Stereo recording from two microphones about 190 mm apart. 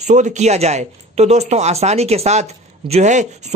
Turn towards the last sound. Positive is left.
turn(degrees=-40)  # may be behind; listen again after turning